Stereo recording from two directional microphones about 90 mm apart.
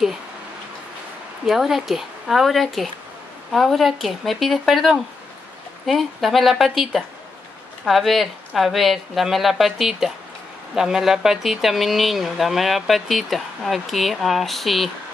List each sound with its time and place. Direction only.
1.4 s speech: centre (ahead or behind)